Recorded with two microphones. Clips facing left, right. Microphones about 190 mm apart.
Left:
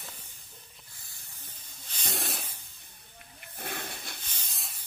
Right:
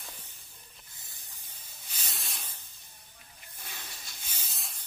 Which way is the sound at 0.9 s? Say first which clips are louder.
Left 1 dB; 15° right (ahead or behind).